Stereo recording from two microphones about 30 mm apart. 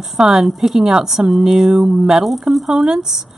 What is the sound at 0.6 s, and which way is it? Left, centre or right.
A woman's voice, centre.